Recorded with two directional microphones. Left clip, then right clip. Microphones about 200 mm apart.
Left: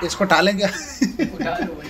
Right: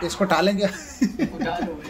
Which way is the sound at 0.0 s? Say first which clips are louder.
Left 4 dB; 5° left (ahead or behind).